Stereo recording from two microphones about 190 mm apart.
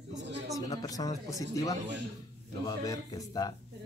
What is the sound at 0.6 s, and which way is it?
Speech, 20° left (ahead or behind).